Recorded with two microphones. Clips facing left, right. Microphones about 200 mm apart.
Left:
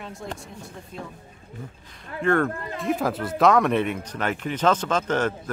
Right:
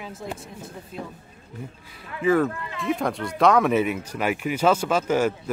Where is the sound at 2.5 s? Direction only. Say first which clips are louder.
Left 3 dB; 40° left (ahead or behind).